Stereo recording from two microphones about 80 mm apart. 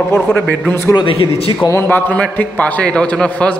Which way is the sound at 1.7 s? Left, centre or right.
Left.